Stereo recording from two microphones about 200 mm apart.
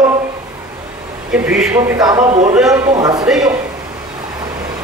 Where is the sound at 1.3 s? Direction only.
5° right (ahead or behind).